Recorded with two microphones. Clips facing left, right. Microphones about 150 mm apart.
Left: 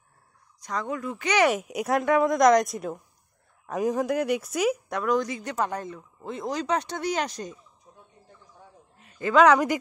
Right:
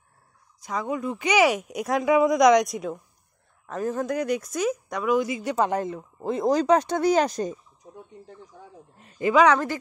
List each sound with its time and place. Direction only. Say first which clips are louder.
0.6 s speech: right 2 dB; 5° right (ahead or behind)
3.6 s speech: left 2 dB; 15° left (ahead or behind); by 5.6 s 10° right (ahead or behind)
5.9 s speech: right 7 dB; 35° right (ahead or behind)
7.8 s bird: right 11 dB; 90° right
8.5 s speech: right 5 dB; 90° right
9.3 s speech: left 1 dB; centre (ahead or behind)